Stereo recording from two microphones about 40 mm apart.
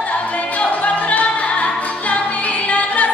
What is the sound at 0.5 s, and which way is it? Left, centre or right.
Music, left.